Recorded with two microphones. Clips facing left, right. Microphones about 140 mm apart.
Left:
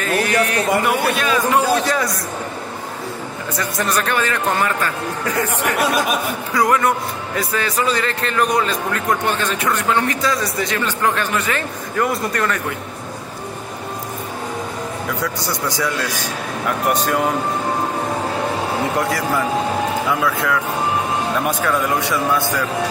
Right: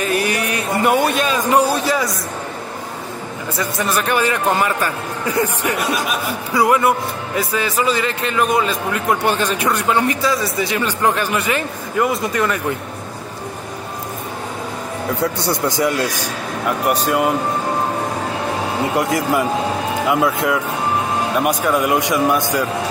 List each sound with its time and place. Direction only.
0.0 s a sound: 15° right (ahead or behind)
1.9 s a man's voice: centre (ahead or behind)
3.5 s a man's voice: 5° right (ahead or behind)
12.1 s a man's voice: centre (ahead or behind)
15.0 s a man's voice: 25° right (ahead or behind)
16.9 s a man's voice: 5° right (ahead or behind)
18.9 s a man's voice: 20° right (ahead or behind)